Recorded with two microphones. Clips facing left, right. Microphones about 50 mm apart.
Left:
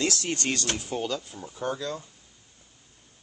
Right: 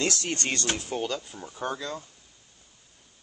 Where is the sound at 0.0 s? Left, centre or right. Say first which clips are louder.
Left 1 dB; centre.